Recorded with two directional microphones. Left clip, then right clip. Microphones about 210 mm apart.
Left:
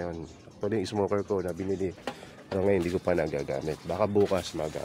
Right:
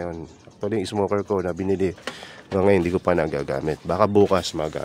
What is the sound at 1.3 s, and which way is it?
Speech, 30° right (ahead or behind).